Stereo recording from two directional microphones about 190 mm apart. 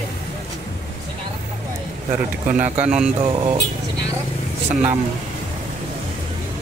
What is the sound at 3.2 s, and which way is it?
Speech, 30° right (ahead or behind).